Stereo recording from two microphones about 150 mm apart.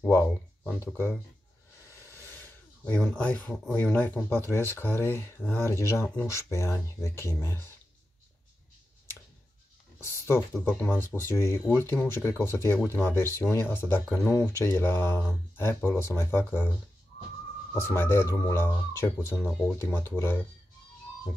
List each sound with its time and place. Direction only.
0.7 s speech: 15° left (ahead or behind)
2.0 s a sound: 15° left (ahead or behind)
3.7 s speech: 10° left (ahead or behind)
10.0 s speech: 15° left (ahead or behind)
17.7 s speech: 15° left (ahead or behind)